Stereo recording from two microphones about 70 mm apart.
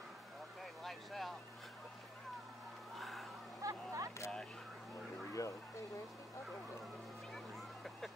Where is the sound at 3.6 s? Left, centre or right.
Right.